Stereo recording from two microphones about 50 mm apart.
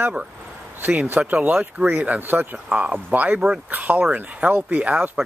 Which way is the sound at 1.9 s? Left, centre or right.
Right.